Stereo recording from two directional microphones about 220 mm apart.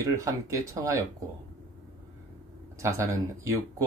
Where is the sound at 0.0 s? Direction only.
15° right (ahead or behind).